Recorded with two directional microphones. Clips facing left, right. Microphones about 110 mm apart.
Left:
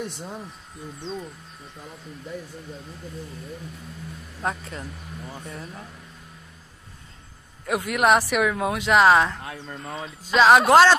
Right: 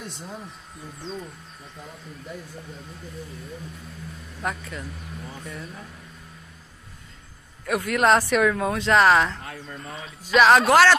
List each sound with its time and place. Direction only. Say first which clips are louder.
4.4 s speech: left 1 dB; 30° left (ahead or behind)
7.6 s speech: even; 15° left (ahead or behind)